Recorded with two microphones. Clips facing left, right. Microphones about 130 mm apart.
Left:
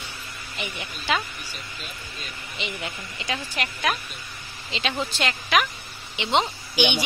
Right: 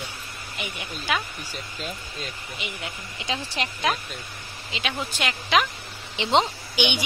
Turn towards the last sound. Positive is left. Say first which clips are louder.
# left 2 dB
turn(degrees=-15)  # may be behind; listen again after turning